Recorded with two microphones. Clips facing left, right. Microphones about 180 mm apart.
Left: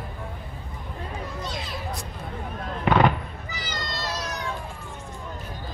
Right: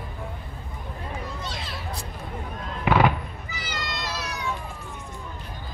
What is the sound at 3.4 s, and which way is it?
Cat, 40° left (ahead or behind).